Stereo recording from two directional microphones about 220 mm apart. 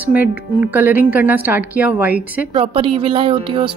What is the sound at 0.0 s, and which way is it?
A woman's voice, 5° right (ahead or behind).